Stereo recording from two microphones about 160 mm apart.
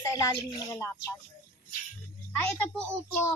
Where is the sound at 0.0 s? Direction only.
20° left (ahead or behind).